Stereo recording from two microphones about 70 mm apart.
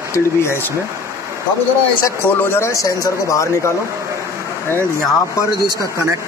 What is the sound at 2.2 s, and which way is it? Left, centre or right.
Speech, left.